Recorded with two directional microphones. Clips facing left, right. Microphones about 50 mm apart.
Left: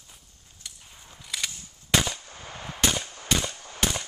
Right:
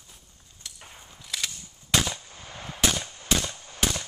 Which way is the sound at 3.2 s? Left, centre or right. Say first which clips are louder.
Even; centre.